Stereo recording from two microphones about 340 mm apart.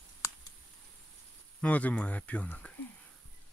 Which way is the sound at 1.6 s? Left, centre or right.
Centre.